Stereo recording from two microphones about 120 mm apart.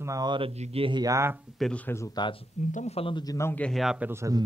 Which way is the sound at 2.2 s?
40° left (ahead or behind).